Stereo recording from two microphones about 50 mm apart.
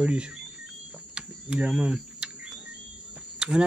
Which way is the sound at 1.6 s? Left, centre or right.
Right.